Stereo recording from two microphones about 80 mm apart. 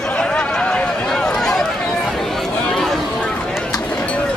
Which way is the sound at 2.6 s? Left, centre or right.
Centre.